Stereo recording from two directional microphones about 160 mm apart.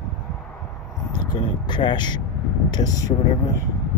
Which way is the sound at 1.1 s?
30° left (ahead or behind).